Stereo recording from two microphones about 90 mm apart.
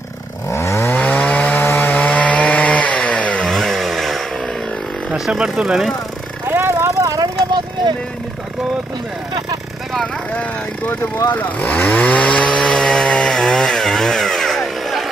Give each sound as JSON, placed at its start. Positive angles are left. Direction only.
{"t": 0.5, "sound": "chainsaw", "side_deg": 30}
{"t": 0.9, "sound": "chainsaw", "side_deg": 15}
{"t": 3.4, "sound": "chainsaw", "side_deg": 0}
{"t": 5.1, "sound": "speech", "side_deg": -10}
{"t": 6.5, "sound": "a sound", "side_deg": -30}
{"t": 11.3, "sound": "chainsaw", "side_deg": 20}